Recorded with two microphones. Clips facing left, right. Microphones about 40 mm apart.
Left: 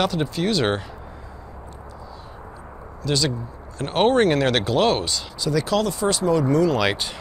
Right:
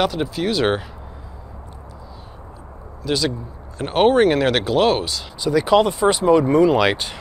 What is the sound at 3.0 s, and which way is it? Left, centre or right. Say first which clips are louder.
Speech: right 2 dB; centre.